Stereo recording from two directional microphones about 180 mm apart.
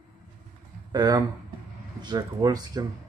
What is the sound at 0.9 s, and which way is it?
Speech, 25° right (ahead or behind).